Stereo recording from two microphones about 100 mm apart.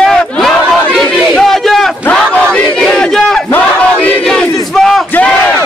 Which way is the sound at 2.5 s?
10° left (ahead or behind).